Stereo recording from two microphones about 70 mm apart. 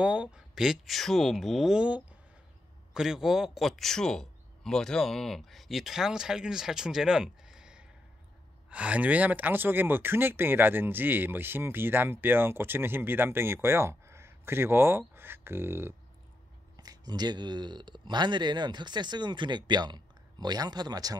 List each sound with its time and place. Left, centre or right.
0.0 s speech: centre
1.7 s speech: centre; by 15.9 s right
16.7 s speech: right